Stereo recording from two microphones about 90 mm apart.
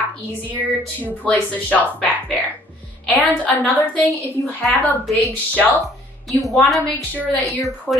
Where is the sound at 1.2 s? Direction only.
15° left (ahead or behind).